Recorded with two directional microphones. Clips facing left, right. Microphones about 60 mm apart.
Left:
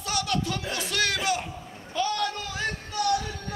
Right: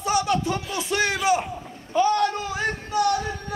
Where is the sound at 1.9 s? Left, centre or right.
Right.